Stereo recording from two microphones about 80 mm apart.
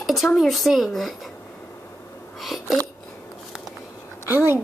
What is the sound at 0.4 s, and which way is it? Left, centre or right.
Speech, centre.